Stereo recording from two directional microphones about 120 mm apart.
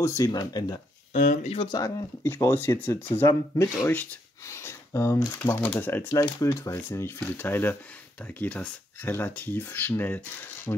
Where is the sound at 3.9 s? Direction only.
20° left (ahead or behind).